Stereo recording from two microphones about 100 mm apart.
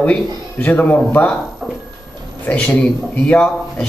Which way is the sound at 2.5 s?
15° left (ahead or behind).